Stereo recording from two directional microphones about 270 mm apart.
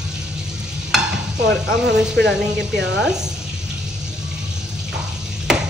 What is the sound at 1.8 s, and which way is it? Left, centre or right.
Speech, right.